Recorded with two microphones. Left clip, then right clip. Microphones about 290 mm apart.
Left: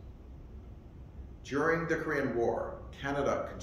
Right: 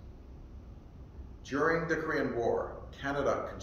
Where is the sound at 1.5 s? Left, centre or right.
Centre.